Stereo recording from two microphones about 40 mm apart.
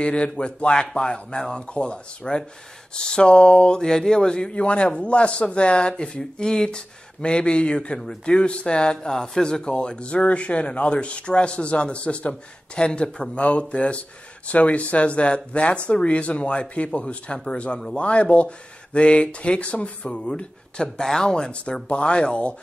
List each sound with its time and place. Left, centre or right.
0.0 s speech: left; by 21.5 s centre
21.8 s speech: left